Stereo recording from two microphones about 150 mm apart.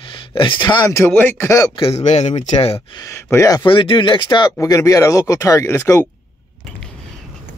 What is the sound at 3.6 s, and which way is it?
Speech, 35° left (ahead or behind).